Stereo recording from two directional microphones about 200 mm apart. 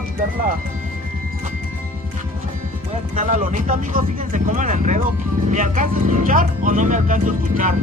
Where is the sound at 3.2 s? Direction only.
40° right (ahead or behind).